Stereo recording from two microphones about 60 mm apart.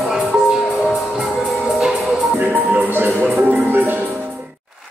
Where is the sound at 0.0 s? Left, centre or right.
Centre.